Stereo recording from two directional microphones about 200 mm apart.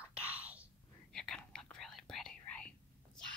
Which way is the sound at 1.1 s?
5° left (ahead or behind).